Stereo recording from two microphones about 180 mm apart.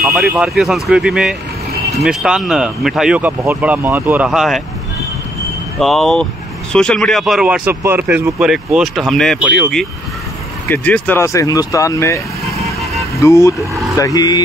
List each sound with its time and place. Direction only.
0.3 s speech: 5° right (ahead or behind)
5.8 s speech: centre (ahead or behind); by 12.2 s 15° left (ahead or behind)
13.2 s speech: 15° left (ahead or behind)